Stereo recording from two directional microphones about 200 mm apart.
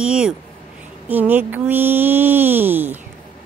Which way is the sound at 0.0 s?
5° right (ahead or behind).